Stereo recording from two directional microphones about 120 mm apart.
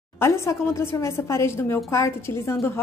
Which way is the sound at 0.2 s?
25° left (ahead or behind).